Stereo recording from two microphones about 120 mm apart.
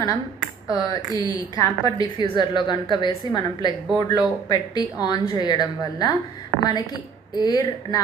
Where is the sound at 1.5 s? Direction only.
30° left (ahead or behind).